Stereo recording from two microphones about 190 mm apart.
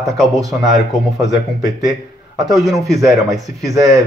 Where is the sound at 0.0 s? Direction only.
Centre (ahead or behind).